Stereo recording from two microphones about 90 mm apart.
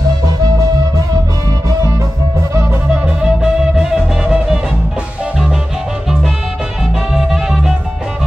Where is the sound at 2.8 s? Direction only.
10° right (ahead or behind).